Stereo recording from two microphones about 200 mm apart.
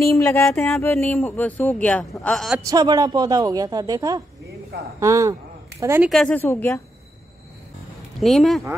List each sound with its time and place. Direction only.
0.0 s speech: 15° left (ahead or behind)
2.6 s a woman's voice: 20° right (ahead or behind)
6.0 s speech: 5° left (ahead or behind)
8.2 s speech: centre (ahead or behind)